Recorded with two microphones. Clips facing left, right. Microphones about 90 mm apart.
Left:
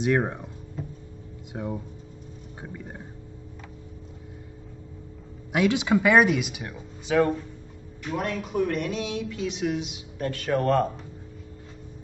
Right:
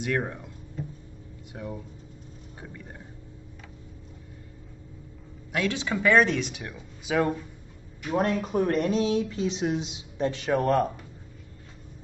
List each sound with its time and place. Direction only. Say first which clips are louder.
0.0 s speech: left 5 dB; 20° left (ahead or behind)
1.5 s speech: left 5 dB; 20° left (ahead or behind)
5.5 s speech: left 6 dB; 20° left (ahead or behind)
7.1 s speech: left 3 dB; 5° right (ahead or behind)
8.1 s speech: right 3 dB; 35° right (ahead or behind); by 10.9 s 15° right (ahead or behind)